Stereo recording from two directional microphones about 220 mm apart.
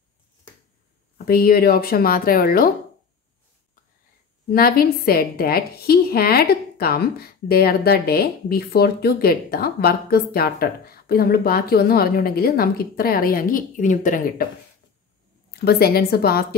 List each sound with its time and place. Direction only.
1.1 s a woman's voice: 40° left (ahead or behind)
4.5 s a woman's voice: 45° left (ahead or behind)
15.6 s a woman's voice: 45° left (ahead or behind)